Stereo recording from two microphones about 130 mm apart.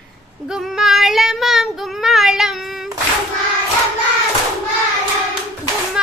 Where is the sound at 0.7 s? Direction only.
Centre (ahead or behind).